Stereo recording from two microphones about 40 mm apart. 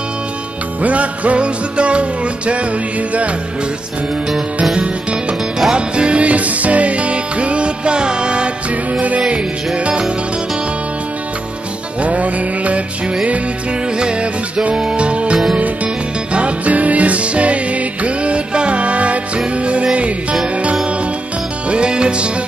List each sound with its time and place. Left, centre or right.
0.8 s music: right
5.7 s music: right
12.0 s music: right
13.9 s music: right
21.6 s music: right